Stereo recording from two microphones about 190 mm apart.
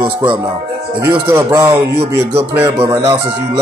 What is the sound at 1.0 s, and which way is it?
Speech, 15° right (ahead or behind).